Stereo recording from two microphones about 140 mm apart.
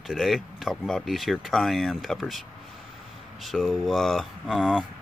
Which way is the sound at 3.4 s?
Centre (ahead or behind).